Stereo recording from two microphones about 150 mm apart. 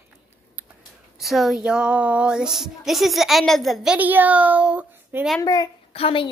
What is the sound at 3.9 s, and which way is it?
A child's voice, 10° right (ahead or behind).